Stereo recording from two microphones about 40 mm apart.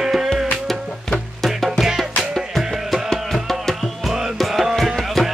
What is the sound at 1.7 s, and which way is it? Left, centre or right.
Music, centre.